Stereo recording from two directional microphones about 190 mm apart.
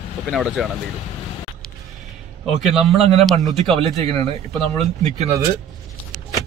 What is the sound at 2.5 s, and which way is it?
Speech, centre (ahead or behind).